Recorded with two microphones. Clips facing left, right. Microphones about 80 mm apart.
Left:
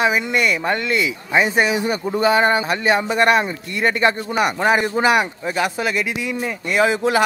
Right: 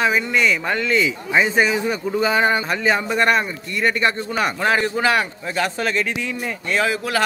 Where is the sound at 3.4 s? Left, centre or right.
Left.